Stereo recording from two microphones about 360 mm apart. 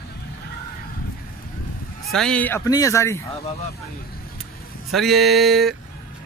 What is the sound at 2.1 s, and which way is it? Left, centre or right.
Speech, centre.